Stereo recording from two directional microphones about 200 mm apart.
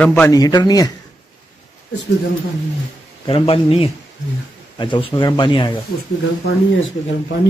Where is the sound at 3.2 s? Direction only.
25° left (ahead or behind).